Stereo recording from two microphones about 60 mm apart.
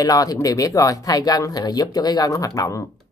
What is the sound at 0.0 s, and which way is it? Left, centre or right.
Speech, left.